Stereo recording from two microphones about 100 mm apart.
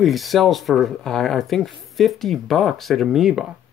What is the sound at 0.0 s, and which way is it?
Speech, centre (ahead or behind).